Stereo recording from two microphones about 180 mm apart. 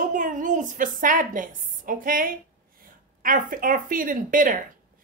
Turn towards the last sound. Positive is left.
turn(degrees=-50)  # may be behind; listen again after turning